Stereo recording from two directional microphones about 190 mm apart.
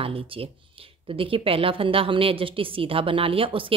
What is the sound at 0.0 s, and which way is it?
Speech, 30° right (ahead or behind).